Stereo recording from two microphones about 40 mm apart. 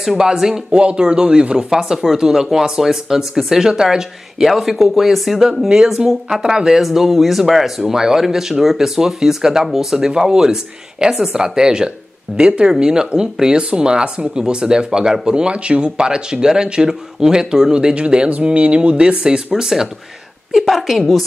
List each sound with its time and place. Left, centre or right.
0.0 s speech: centre
1.7 s speech: centre
5.4 s speech: centre
6.8 s speech: centre; by 19.4 s right
19.5 s speech: centre
20.6 s speech: centre